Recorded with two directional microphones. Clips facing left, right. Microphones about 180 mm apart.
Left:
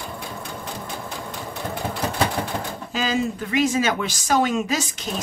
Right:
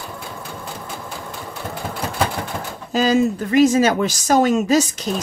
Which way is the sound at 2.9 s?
40° right (ahead or behind).